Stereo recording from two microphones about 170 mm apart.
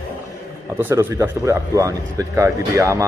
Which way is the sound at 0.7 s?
15° right (ahead or behind).